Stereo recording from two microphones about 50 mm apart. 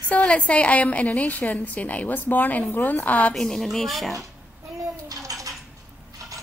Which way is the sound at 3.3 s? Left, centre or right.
Centre.